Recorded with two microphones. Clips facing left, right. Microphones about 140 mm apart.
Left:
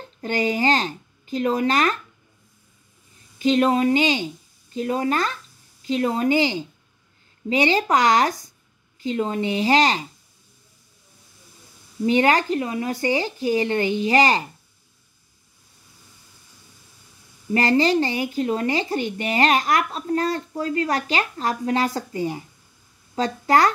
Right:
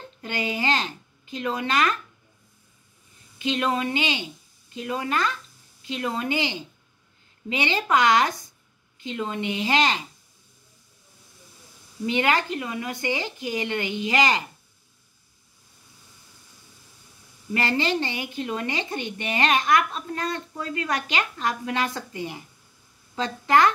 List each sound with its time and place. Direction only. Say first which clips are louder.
0.2 s speech: left 6 dB; 40° left (ahead or behind)
3.3 s speech: left 7 dB; 40° left (ahead or behind)
12.1 s speech: left 5 dB; 40° left (ahead or behind)
12.9 s speech: left 6 dB; 40° left (ahead or behind)
17.6 s a woman's voice: left 6 dB; 40° left (ahead or behind)